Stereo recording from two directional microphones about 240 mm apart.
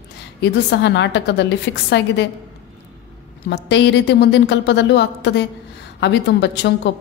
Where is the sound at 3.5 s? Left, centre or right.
Left.